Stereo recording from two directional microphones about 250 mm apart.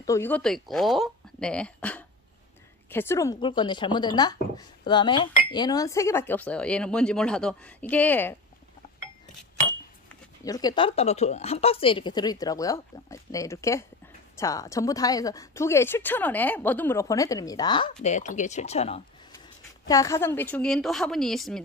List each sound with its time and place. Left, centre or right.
0.0 s speech: centre
10.4 s speech: centre
18.0 s speech: left
19.9 s speech: centre